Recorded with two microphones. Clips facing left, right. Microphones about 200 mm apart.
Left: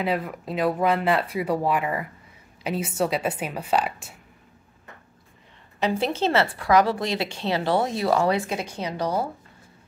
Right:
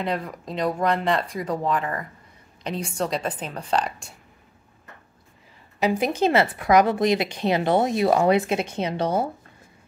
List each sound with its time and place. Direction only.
0.0 s speech: 5° left (ahead or behind)
5.8 s a woman's voice: 15° right (ahead or behind)